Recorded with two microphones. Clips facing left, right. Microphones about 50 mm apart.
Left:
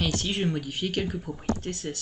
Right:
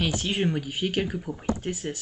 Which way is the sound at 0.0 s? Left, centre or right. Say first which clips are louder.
Right 2 dB; centre.